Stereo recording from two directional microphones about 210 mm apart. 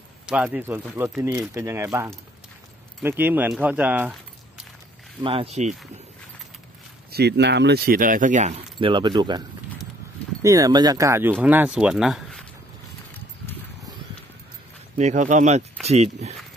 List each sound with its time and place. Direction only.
0.3 s speech: 5° right (ahead or behind)
5.2 s speech: 25° right (ahead or behind)
7.1 s speech: 50° right (ahead or behind)
8.7 s speech: 20° right (ahead or behind)
10.4 s speech: 15° right (ahead or behind); by 12.4 s centre (ahead or behind)
15.0 s speech: 35° right (ahead or behind)